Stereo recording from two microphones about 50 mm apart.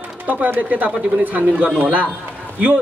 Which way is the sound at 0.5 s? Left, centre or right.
Right.